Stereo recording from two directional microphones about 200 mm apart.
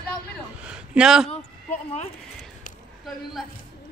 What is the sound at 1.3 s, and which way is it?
Basketball bounce, 35° left (ahead or behind).